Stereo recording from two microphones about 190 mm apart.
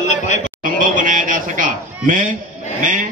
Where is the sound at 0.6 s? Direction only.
45° right (ahead or behind).